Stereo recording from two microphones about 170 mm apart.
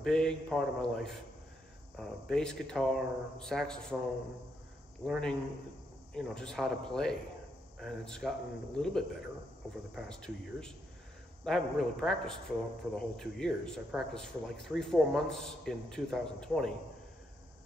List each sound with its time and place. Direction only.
0.0 s a man's voice: 5° left (ahead or behind)
5.0 s a man's voice: centre (ahead or behind)